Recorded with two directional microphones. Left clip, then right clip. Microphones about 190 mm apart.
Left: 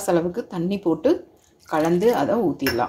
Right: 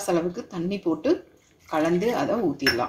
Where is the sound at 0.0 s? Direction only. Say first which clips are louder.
Left 4 dB; 15° left (ahead or behind).